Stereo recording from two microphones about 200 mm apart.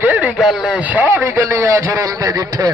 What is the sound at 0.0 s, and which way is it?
A man's voice, 10° right (ahead or behind).